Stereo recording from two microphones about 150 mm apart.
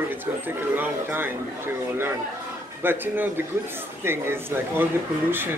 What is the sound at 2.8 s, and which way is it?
Speech, 15° right (ahead or behind).